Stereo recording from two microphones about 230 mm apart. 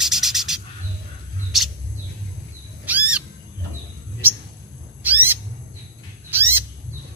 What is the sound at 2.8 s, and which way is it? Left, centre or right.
Owl, centre.